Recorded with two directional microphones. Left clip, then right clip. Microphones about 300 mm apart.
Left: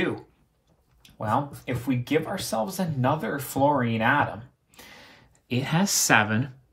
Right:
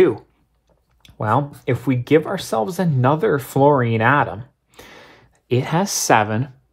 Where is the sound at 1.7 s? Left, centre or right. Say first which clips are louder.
Right 10 dB; right.